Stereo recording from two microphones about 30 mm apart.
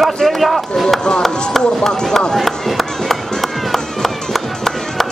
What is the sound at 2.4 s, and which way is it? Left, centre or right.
Chop, centre.